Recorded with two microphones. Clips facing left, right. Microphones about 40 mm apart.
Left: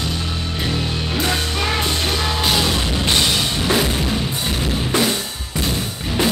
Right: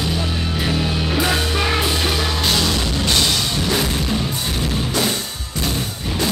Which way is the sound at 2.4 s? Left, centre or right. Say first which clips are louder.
Left 1 dB; centre.